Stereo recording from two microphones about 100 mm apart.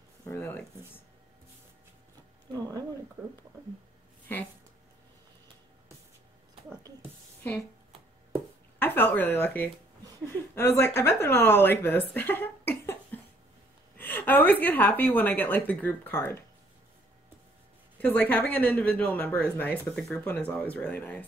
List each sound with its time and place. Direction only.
0.2 s speech: 25° left (ahead or behind)
8.7 s a woman's voice: 20° left (ahead or behind)
17.9 s a woman's voice: 15° left (ahead or behind)
20.0 s a woman's voice: 5° left (ahead or behind)